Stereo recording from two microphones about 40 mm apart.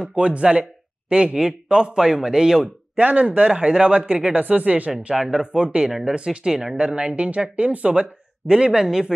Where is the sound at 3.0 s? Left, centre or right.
Right.